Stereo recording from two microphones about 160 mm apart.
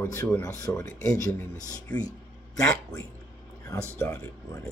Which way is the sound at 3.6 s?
15° left (ahead or behind).